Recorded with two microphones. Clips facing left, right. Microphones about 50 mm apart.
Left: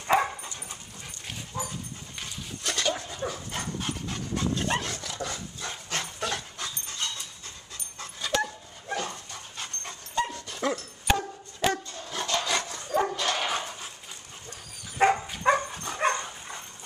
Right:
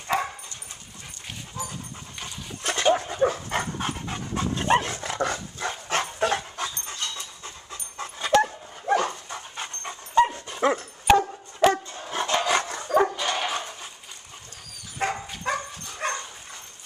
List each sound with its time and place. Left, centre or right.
0.0 s dog: centre
1.6 s dog: centre
2.6 s dog: right
3.8 s dog: right
5.1 s dog: right
8.8 s dog: right
9.3 s dog: right
12.6 s dog: right
13.0 s dog: centre
15.0 s dog: left